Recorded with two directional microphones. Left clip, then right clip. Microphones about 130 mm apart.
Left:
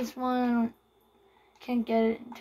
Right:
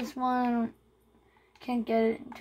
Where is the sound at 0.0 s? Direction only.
60° right (ahead or behind).